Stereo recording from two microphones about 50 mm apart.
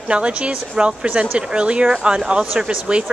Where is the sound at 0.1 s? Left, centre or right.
Right.